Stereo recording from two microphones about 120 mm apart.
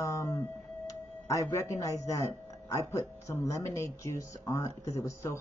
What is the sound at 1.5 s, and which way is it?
Speech, 25° left (ahead or behind).